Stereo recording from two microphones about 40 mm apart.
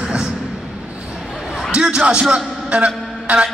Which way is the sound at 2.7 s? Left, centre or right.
Right.